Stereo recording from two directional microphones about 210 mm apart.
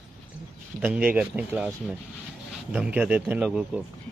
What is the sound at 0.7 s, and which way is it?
Speech, 5° right (ahead or behind).